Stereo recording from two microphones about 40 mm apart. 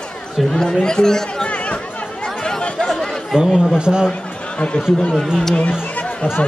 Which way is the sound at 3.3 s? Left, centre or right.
Right.